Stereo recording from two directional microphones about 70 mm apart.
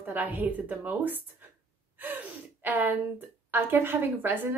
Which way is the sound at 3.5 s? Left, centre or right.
Right.